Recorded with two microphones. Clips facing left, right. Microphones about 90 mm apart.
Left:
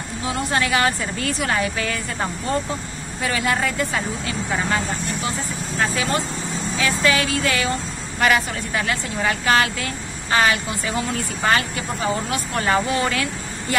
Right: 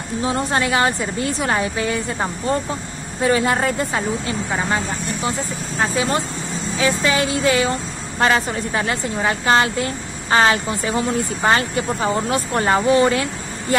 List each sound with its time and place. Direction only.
0.2 s a woman's voice: 30° right (ahead or behind)